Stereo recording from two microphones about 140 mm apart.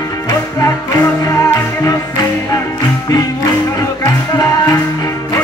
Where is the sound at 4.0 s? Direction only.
25° left (ahead or behind).